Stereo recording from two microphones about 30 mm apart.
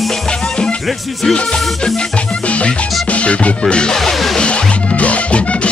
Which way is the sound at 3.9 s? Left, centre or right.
Centre.